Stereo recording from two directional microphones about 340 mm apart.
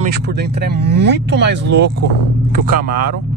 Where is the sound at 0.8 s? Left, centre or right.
Right.